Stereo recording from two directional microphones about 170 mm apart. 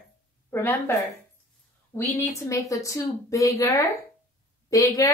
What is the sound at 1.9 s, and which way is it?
A woman's voice, 15° left (ahead or behind).